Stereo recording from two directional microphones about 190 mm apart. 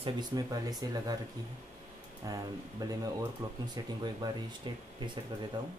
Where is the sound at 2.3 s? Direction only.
20° right (ahead or behind).